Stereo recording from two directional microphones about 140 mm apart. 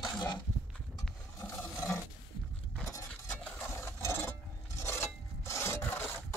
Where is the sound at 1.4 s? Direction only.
20° left (ahead or behind).